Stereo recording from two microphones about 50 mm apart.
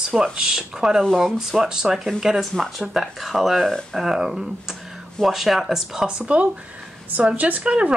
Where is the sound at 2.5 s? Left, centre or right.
Centre.